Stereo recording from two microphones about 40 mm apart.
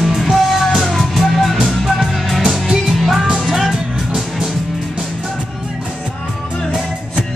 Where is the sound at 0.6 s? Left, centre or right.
Centre.